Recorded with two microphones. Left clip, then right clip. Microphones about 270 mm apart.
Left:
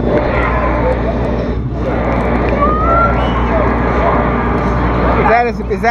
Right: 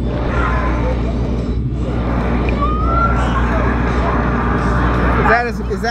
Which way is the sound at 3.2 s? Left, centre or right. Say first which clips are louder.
Left 4 dB; right.